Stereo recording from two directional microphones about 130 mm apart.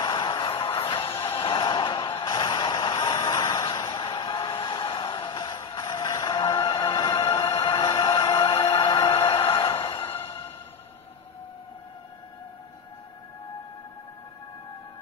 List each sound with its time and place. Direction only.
0.0 s music: 35° left (ahead or behind)
1.1 s music: 20° left (ahead or behind)
1.4 s a sound: 40° left (ahead or behind)
3.2 s a sound: 25° left (ahead or behind)
8.0 s music: 40° left (ahead or behind)
9.9 s music: 15° left (ahead or behind)